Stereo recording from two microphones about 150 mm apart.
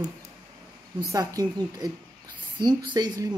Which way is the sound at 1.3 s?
25° right (ahead or behind).